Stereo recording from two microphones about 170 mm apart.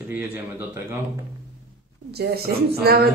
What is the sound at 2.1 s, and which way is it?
A woman's voice, 70° right (ahead or behind).